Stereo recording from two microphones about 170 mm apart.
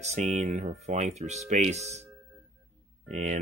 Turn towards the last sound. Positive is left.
turn(degrees=-45)  # may be behind; listen again after turning